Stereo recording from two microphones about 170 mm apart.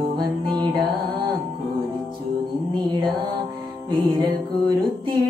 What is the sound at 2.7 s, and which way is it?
Mantra, 25° right (ahead or behind).